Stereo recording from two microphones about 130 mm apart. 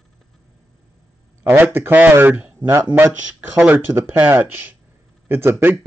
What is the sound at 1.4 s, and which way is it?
Speech, 15° right (ahead or behind).